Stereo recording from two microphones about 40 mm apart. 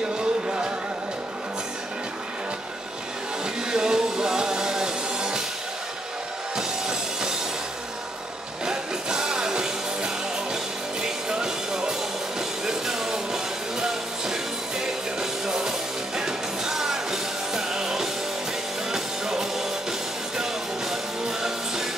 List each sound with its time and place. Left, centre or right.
0.2 s music: right
3.7 s music: centre
6.5 s music: centre
8.6 s music: centre
20.9 s music: centre